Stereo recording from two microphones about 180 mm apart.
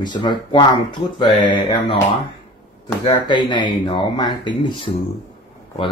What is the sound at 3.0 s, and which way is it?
Speech, 25° left (ahead or behind).